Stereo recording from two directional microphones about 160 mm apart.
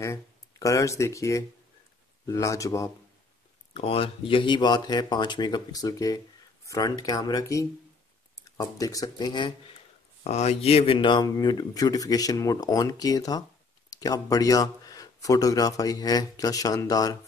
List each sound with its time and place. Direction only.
0.0 s speech: 20° left (ahead or behind)
3.7 s speech: 35° left (ahead or behind)
10.2 s speech: 45° left (ahead or behind); by 17.2 s 20° left (ahead or behind)